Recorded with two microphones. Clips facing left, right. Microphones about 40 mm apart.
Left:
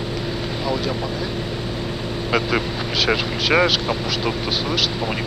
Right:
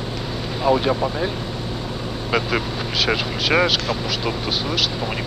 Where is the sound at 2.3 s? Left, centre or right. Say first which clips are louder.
Left 1 dB; centre.